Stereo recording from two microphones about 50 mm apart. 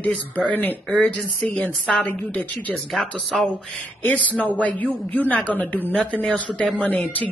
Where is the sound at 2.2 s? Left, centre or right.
Left.